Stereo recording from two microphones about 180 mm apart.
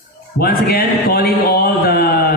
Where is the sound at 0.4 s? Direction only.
60° left (ahead or behind).